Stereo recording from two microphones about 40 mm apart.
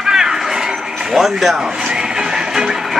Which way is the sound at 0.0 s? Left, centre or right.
Centre.